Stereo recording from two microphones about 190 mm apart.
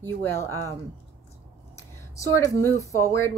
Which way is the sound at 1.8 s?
15° left (ahead or behind).